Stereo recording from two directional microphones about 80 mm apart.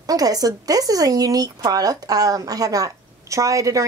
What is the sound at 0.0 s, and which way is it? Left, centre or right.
Speech, right.